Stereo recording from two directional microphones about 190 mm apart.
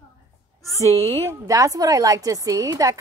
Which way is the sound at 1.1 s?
15° right (ahead or behind).